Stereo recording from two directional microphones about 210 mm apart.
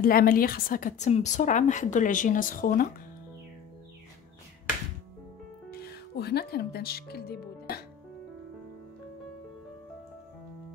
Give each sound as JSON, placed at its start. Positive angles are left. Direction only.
{"t": 0.0, "sound": "a woman's voice", "side_deg": 45}
{"t": 5.7, "sound": "speech", "side_deg": 50}